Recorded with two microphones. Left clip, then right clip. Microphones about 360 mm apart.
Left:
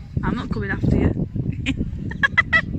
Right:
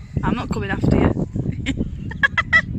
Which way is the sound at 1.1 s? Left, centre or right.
Right.